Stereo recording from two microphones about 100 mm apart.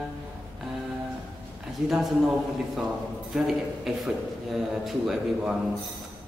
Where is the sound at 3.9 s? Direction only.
5° right (ahead or behind).